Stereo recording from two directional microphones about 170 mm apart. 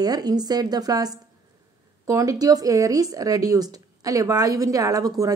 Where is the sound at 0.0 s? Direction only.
25° right (ahead or behind).